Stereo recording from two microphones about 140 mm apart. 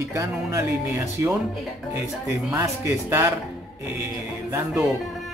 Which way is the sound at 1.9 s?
20° right (ahead or behind).